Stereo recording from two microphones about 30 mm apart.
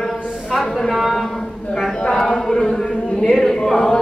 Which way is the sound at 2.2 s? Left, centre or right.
Centre.